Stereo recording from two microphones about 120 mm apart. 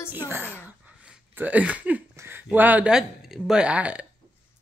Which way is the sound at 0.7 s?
15° right (ahead or behind).